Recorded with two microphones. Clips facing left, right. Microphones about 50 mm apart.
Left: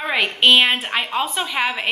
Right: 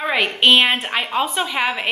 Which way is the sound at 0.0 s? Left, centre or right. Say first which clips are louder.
Right 1 dB; centre.